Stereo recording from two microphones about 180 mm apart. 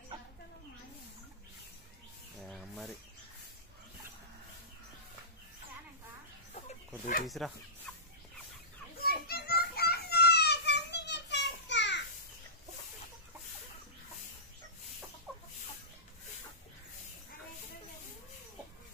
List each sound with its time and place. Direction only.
2.4 s a sound: centre (ahead or behind)
7.2 s speech: centre (ahead or behind)
7.9 s fowl: 5° left (ahead or behind)
9.0 s children playing: 60° left (ahead or behind); by 12.0 s 75° left (ahead or behind)